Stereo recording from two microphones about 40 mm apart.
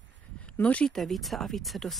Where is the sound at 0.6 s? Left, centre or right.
Left.